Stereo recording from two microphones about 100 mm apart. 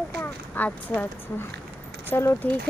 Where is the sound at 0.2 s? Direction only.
15° left (ahead or behind).